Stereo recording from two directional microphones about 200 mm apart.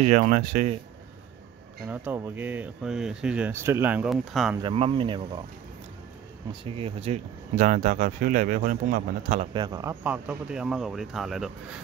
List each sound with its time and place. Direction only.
0.0 s speech: 40° right (ahead or behind)
1.9 s speech: 10° right (ahead or behind)
4.6 s speech: 25° right (ahead or behind)
6.6 s speech: 30° right (ahead or behind)
9.5 s speech: 20° right (ahead or behind)
10.0 s speech: 5° right (ahead or behind)